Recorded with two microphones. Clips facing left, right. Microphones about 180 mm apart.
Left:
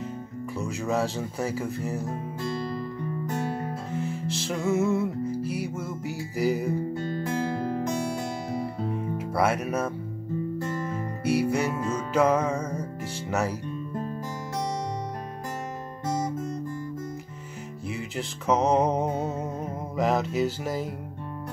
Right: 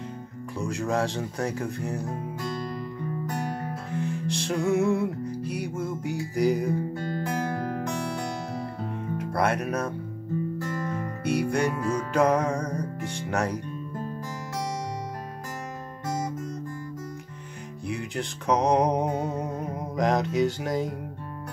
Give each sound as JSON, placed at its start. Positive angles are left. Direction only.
{"t": 0.6, "sound": "music", "side_deg": 5}
{"t": 3.9, "sound": "music", "side_deg": 5}
{"t": 7.4, "sound": "music", "side_deg": 30}
{"t": 9.2, "sound": "speech", "side_deg": 5}
{"t": 10.9, "sound": "music", "side_deg": 5}
{"t": 17.8, "sound": "music", "side_deg": 5}